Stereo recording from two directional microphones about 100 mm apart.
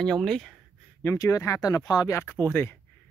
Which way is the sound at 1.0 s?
35° left (ahead or behind).